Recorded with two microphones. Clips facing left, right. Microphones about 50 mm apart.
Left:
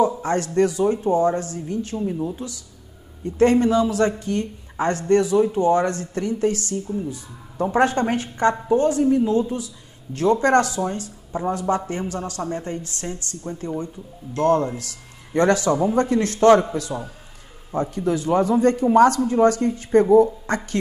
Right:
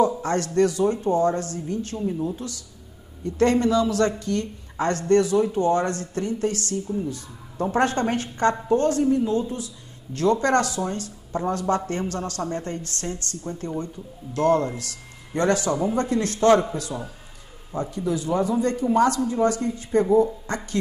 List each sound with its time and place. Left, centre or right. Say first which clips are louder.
0.0 s speech: left 1 dB; centre
3.3 s a woman's voice: left 3 dB; centre
15.3 s a man's voice: left 4 dB; left
15.7 s speech: left 4 dB; left
16.1 s a man's voice: left 3 dB; left
17.7 s speech: left 4 dB; left